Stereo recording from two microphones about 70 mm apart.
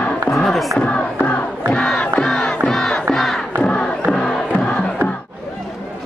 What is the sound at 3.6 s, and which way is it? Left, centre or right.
Crowd, centre.